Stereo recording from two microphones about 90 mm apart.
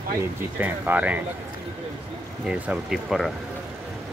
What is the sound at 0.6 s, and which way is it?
Speech, 20° right (ahead or behind).